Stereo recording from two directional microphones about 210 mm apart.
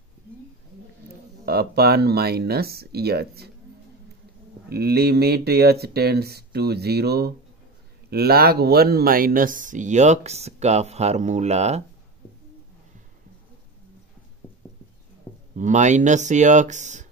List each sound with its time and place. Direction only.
1.4 s speech: 50° right (ahead or behind)
4.6 s speech: 50° right (ahead or behind); by 11.8 s 30° right (ahead or behind)
15.5 s speech: 35° right (ahead or behind)